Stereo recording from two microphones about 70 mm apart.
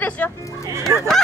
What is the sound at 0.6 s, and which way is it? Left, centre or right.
Fowl, right.